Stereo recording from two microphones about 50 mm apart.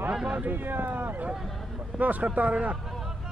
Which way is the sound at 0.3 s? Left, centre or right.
Right.